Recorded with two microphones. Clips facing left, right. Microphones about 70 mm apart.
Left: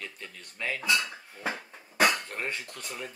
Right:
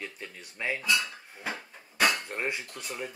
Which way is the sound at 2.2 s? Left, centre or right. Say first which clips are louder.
Right 2 dB; centre.